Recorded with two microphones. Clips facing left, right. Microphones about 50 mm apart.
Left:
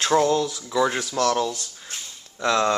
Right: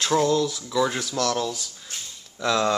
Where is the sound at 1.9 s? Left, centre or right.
Centre.